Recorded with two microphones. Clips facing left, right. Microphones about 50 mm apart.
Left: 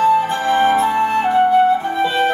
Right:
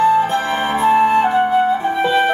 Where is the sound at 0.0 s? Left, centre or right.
Right.